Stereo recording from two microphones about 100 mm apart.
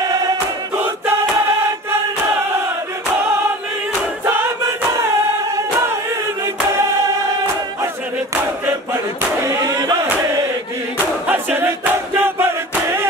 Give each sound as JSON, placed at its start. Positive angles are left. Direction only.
{"t": 6.4, "sound": "music", "side_deg": -30}
{"t": 9.5, "sound": "a sound", "side_deg": -30}
{"t": 11.2, "sound": "battle cry", "side_deg": -20}